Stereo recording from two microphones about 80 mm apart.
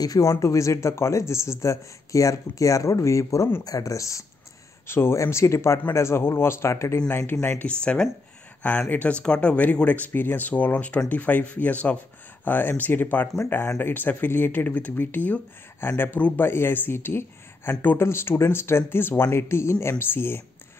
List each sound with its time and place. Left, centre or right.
0.0 s speech: left
4.8 s speech: left
7.5 s speech: centre